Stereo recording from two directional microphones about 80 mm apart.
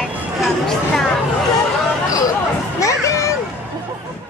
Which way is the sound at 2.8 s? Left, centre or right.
Left.